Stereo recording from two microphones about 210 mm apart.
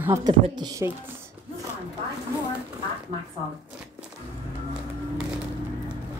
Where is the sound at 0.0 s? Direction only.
15° right (ahead or behind).